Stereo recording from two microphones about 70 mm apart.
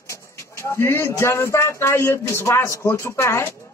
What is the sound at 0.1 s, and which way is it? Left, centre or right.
A man's voice, left.